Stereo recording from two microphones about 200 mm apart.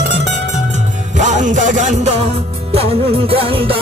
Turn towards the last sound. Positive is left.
turn(degrees=-25)  # may be behind; listen again after turning